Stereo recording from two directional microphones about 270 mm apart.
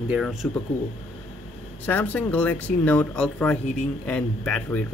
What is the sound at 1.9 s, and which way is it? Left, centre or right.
A man's voice, centre.